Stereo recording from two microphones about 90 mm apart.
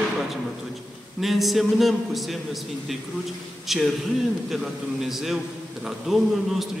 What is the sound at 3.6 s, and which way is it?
Speech, centre (ahead or behind).